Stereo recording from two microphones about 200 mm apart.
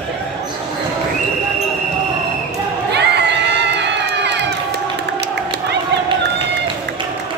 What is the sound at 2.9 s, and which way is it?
Crowd, 55° right (ahead or behind).